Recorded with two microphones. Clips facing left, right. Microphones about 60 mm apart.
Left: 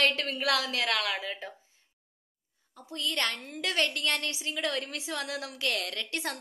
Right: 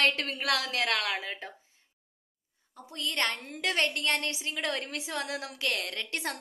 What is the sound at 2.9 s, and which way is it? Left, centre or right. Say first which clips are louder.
A woman's voice: even; right.